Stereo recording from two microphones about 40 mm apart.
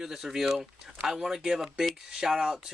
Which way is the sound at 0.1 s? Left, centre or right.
Centre.